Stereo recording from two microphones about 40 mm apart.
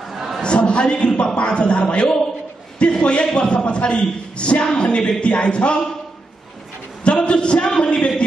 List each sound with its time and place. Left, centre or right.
0.1 s a sound: centre
0.4 s a man's voice: left
7.1 s a man's voice: left